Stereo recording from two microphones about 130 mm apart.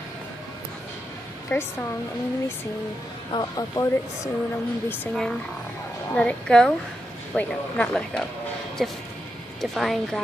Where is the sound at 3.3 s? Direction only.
30° left (ahead or behind).